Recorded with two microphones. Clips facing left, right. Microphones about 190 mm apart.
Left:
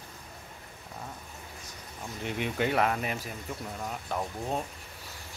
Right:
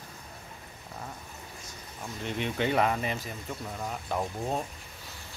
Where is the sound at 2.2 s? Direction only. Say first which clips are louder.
Even; 10° left (ahead or behind).